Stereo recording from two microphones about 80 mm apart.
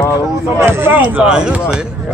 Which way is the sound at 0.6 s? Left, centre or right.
Right.